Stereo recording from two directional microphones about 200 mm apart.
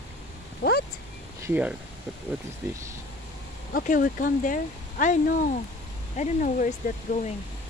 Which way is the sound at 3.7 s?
45° left (ahead or behind).